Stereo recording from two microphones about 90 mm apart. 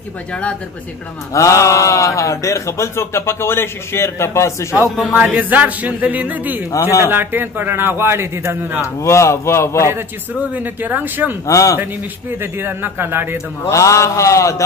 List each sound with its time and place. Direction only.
0.3 s speech: 10° left (ahead or behind)
1.3 s speech: 35° left (ahead or behind)
5.0 s a man's voice: 15° right (ahead or behind)
6.8 s speech: 35° left (ahead or behind)
7.1 s a man's voice: 25° right (ahead or behind)
8.8 s speech: 35° left (ahead or behind)
10.5 s a man's voice: 20° right (ahead or behind)
11.4 s speech: 35° left (ahead or behind)
12.4 s a man's voice: 25° right (ahead or behind)
13.7 s speech: 35° left (ahead or behind)